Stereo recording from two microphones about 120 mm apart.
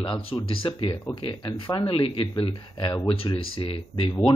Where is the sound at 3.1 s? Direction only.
50° left (ahead or behind).